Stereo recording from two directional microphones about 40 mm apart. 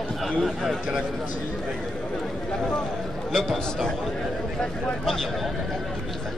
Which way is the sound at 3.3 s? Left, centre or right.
Centre.